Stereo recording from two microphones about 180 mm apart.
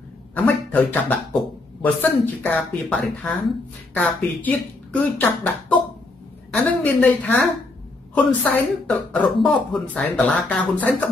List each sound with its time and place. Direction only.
0.3 s speech: 10° left (ahead or behind)